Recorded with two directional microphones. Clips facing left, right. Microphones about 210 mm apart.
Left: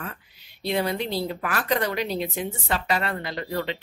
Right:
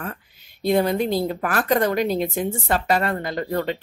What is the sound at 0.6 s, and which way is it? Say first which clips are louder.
A woman's voice: right 6 dB; 50° right (ahead or behind).